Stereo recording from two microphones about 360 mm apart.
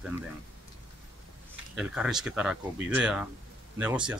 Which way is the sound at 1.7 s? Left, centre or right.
Centre.